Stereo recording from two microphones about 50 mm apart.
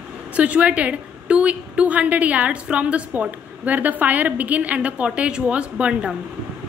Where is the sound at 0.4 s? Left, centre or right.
Right.